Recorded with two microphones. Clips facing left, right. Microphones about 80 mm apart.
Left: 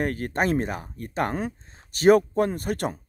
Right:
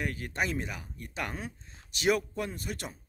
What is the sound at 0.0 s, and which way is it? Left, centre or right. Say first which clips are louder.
Speech: left 8 dB; left.